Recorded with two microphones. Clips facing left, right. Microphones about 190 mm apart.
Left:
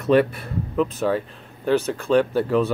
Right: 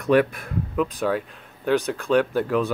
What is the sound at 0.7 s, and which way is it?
Speech, centre (ahead or behind).